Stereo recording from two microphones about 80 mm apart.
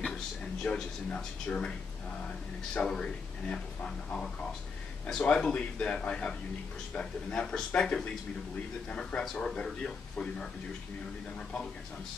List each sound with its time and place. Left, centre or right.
0.7 s speech: centre
2.7 s speech: centre